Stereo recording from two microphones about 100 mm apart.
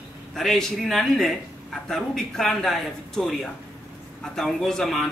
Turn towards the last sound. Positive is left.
turn(degrees=5)  # may be behind; listen again after turning